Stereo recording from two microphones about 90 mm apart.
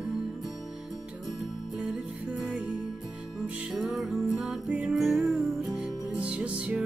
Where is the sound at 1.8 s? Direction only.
15° right (ahead or behind).